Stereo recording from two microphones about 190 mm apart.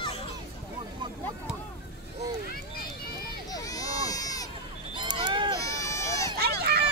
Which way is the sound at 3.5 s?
20° left (ahead or behind).